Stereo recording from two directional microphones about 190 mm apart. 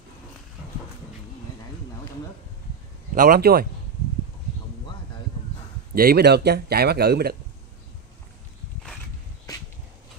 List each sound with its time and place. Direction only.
3.2 s speech: 50° right (ahead or behind)
5.9 s speech: 55° right (ahead or behind)